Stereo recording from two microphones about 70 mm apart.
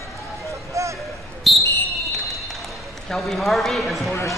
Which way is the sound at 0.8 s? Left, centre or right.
Right.